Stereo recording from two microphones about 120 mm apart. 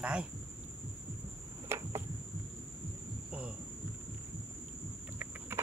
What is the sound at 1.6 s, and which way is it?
Cricket, 25° right (ahead or behind).